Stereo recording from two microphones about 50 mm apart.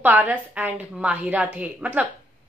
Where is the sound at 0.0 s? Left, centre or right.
Right.